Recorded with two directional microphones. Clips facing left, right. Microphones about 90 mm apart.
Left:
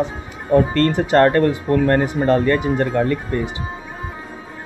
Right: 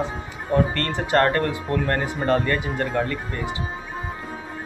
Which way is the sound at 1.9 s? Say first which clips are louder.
Left 4 dB; 20° left (ahead or behind).